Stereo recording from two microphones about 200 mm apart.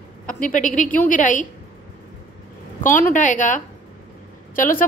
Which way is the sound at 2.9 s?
40° left (ahead or behind).